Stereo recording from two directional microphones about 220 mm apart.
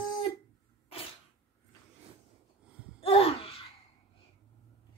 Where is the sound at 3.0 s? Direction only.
25° left (ahead or behind).